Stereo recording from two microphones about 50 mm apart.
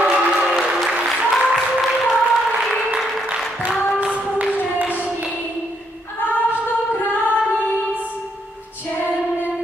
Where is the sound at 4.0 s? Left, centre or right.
Right.